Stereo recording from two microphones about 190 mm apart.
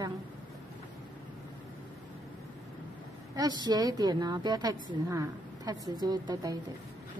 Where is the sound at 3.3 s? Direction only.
20° right (ahead or behind).